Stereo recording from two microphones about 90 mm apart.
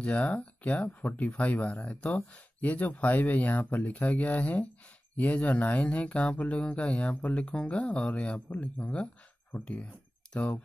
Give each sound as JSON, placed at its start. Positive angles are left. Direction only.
{"t": 0.0, "sound": "speech", "side_deg": 15}